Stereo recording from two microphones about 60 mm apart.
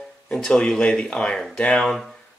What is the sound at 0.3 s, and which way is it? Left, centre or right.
Speech, centre.